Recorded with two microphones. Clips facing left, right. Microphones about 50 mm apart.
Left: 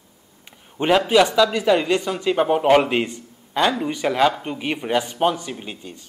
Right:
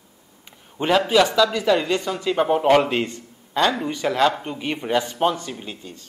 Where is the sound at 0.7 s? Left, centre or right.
Centre.